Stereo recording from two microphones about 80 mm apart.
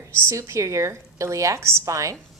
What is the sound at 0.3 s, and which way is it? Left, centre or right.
A woman's voice, right.